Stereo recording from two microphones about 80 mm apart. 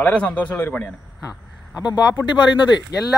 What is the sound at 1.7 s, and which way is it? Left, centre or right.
Speech, left.